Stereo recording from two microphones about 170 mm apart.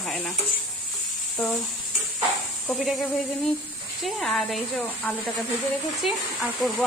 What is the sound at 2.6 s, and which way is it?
Speech, centre (ahead or behind).